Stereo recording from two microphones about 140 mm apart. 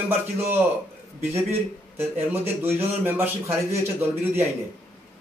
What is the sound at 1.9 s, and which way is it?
Speech, 15° right (ahead or behind).